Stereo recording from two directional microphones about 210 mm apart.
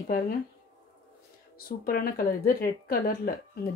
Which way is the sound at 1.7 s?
45° left (ahead or behind).